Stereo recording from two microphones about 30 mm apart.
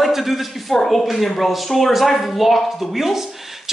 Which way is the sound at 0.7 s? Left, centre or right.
Centre.